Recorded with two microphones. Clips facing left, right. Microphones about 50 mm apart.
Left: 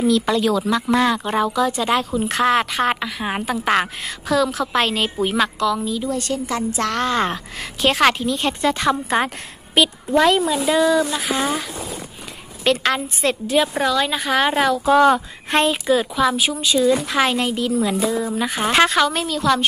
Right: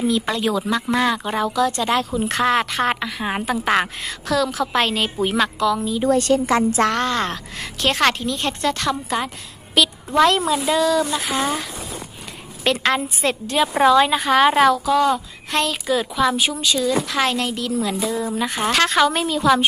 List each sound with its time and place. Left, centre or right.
0.6 s speech: centre
6.0 s a woman's voice: right
7.1 s a woman's voice: centre
9.8 s a woman's voice: left
10.1 s speech: centre
12.8 s speech: centre
13.8 s speech: centre
14.1 s speech: centre
14.9 s speech: left
15.5 s a woman's voice: left
15.9 s speech: centre
16.7 s a woman's voice: centre